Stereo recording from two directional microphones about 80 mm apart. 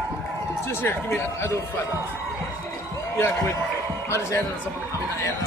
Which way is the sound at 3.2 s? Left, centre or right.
Left.